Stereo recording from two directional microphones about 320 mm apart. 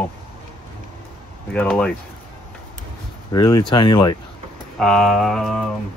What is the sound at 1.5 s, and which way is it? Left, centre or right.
Speech, centre.